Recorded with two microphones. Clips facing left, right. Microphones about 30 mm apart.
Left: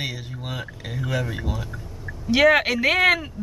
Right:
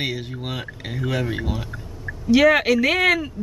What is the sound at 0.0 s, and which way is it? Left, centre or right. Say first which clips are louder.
Speech: right 4 dB; right.